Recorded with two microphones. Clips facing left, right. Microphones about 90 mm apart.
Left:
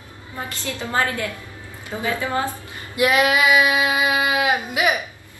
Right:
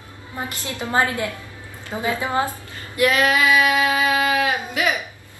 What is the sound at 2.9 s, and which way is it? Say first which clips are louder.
A woman's voice: even; 20° left (ahead or behind).